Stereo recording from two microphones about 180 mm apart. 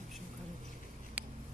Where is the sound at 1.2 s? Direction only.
10° right (ahead or behind).